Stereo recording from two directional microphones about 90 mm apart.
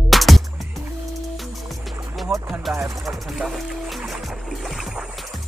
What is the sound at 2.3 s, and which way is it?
Music, 35° right (ahead or behind).